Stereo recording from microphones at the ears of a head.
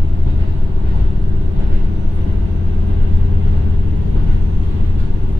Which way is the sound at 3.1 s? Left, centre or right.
Left.